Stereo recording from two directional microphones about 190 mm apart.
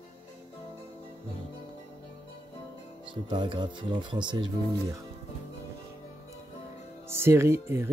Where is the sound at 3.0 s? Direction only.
25° right (ahead or behind).